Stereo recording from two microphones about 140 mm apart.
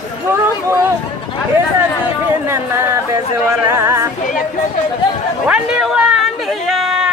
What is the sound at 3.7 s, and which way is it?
Speech, 20° right (ahead or behind).